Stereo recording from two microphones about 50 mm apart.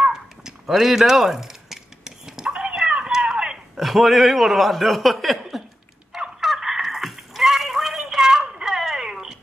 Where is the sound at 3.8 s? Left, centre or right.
Centre.